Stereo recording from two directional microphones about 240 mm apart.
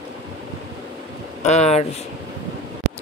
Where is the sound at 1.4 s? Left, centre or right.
Left.